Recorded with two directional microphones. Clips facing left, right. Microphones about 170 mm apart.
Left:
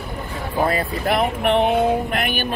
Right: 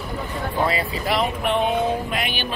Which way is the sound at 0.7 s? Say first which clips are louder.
Left 3 dB; 50° left (ahead or behind).